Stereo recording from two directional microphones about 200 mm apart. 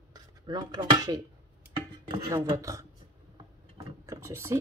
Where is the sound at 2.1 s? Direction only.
20° right (ahead or behind).